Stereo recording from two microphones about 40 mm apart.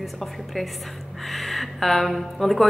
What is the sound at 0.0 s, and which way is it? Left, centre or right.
Speech, centre.